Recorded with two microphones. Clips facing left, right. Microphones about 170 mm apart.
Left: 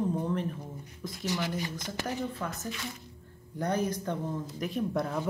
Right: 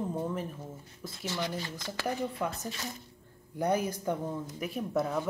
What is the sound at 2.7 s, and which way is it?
Speech, 40° right (ahead or behind).